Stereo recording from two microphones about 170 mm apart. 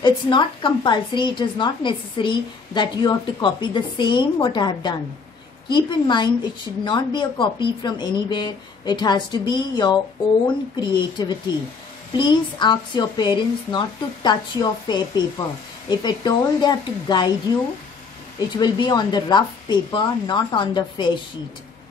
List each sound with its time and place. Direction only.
0.0 s a woman's voice: 30° left (ahead or behind)
18.6 s a woman's voice: 25° left (ahead or behind)